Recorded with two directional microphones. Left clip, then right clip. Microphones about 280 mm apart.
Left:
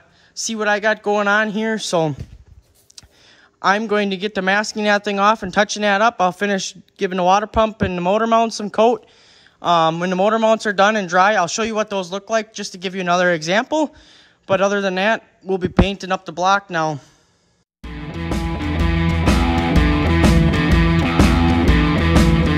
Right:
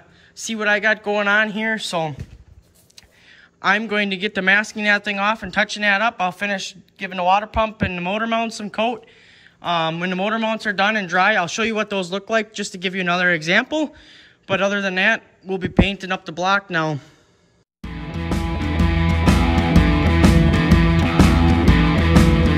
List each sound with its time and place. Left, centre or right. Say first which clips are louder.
0.4 s speech: even; centre
3.6 s speech: left 2 dB; centre
17.8 s music: left 1 dB; centre